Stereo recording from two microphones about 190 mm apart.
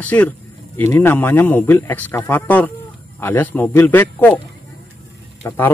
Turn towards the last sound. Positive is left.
turn(degrees=10)  # may be behind; listen again after turning